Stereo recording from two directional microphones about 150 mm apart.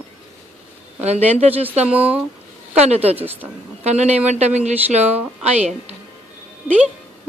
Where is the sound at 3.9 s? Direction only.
50° right (ahead or behind).